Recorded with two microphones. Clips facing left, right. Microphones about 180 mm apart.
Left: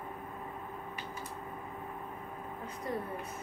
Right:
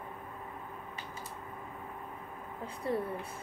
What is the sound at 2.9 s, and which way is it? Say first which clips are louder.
Speech: right 4 dB; 30° right (ahead or behind).